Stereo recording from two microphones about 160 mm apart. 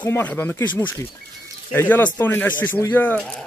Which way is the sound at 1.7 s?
10° left (ahead or behind).